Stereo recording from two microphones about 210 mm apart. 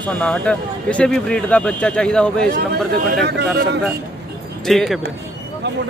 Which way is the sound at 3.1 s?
50° right (ahead or behind).